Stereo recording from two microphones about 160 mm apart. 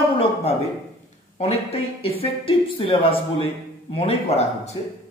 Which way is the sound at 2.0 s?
35° left (ahead or behind).